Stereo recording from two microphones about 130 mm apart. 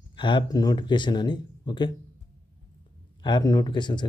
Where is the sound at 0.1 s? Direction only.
35° left (ahead or behind).